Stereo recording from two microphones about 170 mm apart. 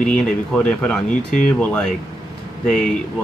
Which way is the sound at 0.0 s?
5° left (ahead or behind).